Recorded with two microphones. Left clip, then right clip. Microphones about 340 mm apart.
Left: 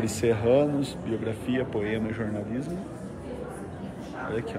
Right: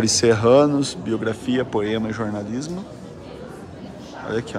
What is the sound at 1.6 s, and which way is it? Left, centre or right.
Speech, right.